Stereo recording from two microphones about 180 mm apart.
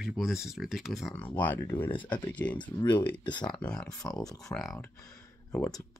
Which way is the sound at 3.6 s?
5° left (ahead or behind).